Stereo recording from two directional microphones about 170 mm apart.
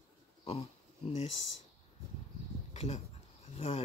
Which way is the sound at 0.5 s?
40° left (ahead or behind).